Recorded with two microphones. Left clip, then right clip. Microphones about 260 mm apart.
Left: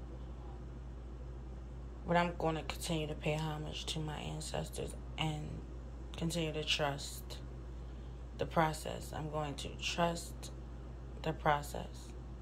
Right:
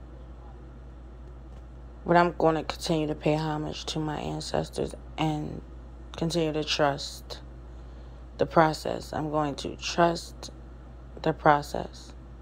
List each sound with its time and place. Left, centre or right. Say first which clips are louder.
2.1 s speech: right 12 dB; centre
8.4 s speech: right 11 dB; centre